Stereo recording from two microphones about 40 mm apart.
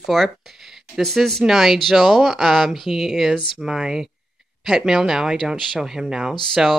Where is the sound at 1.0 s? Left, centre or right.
Centre.